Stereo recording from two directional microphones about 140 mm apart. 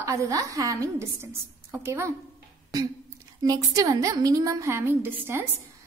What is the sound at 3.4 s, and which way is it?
A woman's voice, 25° right (ahead or behind).